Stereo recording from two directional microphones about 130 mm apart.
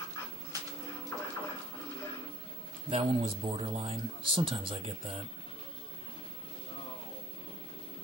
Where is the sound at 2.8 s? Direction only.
45° right (ahead or behind).